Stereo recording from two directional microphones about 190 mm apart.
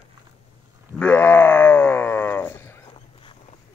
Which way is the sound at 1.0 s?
10° left (ahead or behind).